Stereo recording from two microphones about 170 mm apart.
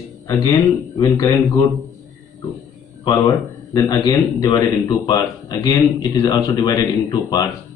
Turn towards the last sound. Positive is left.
turn(degrees=25)  # may be behind; listen again after turning